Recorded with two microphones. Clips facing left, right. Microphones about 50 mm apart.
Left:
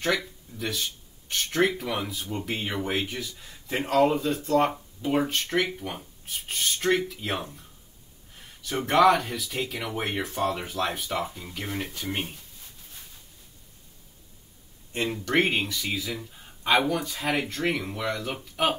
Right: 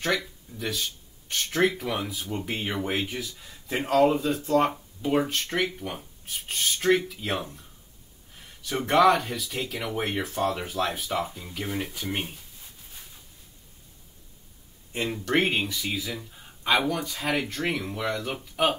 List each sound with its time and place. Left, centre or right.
0.5 s speech: centre
14.9 s speech: centre